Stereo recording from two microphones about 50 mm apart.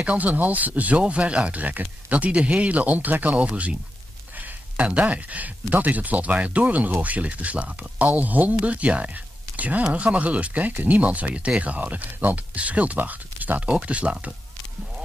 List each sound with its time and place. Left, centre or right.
0.0 s speech: right
4.4 s a sound: right
5.1 s speech: right